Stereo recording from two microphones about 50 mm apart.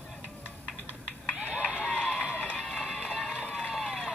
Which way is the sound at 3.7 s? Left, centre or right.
Centre.